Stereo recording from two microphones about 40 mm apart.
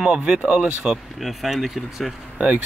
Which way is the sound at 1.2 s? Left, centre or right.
Centre.